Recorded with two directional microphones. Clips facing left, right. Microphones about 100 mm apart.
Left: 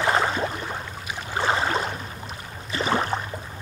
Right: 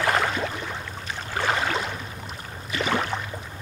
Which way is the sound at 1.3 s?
25° left (ahead or behind).